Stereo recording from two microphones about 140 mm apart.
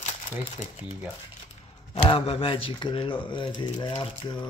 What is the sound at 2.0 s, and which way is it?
Speech, 40° left (ahead or behind).